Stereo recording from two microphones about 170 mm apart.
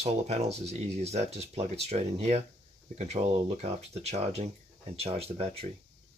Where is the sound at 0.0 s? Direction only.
40° right (ahead or behind).